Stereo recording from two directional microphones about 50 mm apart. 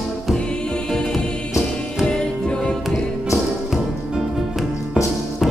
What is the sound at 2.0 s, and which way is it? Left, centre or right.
Music, centre.